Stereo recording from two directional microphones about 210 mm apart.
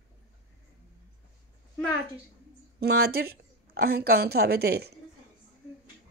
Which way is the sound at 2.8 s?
50° right (ahead or behind).